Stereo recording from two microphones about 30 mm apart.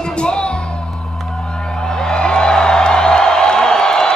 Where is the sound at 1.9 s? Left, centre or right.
Left.